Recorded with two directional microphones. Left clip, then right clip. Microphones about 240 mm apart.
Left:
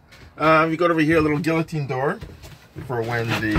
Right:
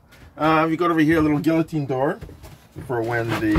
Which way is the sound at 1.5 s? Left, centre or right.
Centre.